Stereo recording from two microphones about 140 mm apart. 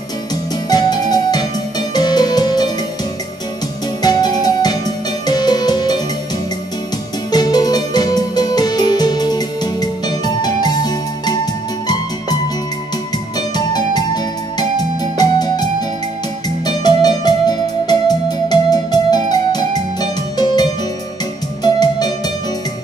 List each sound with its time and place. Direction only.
0.7 s music: 30° left (ahead or behind)
4.0 s music: 30° left (ahead or behind)
7.2 s music: 30° left (ahead or behind)
13.7 s music: 30° left (ahead or behind)
16.6 s music: 30° left (ahead or behind)
21.6 s music: 30° left (ahead or behind)